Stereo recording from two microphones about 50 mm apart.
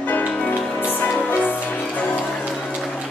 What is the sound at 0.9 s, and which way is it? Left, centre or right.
Music, left.